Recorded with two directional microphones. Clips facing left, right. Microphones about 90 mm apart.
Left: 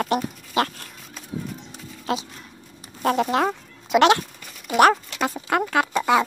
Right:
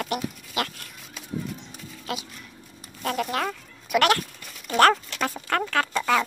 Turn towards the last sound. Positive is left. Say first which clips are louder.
# left 3 dB
turn(degrees=15)  # may be behind; listen again after turning